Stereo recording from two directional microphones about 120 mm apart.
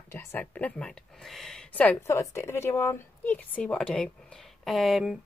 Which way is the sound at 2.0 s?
25° left (ahead or behind).